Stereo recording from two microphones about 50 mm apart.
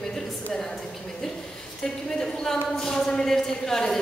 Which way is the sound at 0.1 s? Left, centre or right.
Centre.